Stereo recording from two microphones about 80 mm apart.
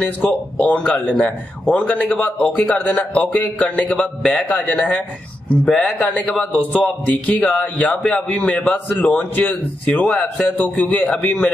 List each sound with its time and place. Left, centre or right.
0.3 s a man's voice: centre